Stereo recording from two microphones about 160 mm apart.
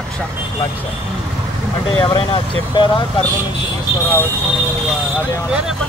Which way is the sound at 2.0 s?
30° left (ahead or behind).